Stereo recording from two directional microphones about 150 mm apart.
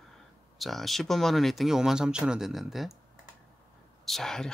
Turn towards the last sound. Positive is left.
turn(degrees=5)  # may be behind; listen again after turning